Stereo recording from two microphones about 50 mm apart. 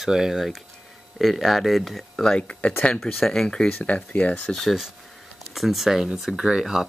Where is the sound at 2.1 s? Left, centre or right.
Centre.